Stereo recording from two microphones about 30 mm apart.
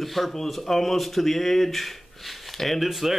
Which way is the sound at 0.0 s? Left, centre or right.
Centre.